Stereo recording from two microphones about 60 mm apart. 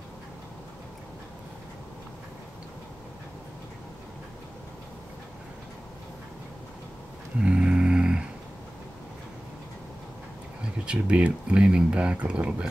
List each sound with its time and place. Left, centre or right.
7.3 s snoring: centre
10.9 s speech: centre